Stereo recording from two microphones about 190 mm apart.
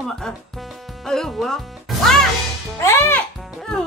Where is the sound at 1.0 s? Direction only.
5° left (ahead or behind).